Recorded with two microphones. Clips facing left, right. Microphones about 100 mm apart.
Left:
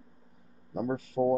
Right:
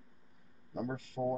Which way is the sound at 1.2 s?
30° left (ahead or behind).